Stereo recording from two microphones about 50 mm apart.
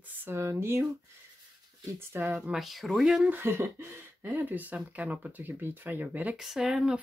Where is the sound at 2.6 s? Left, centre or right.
Centre.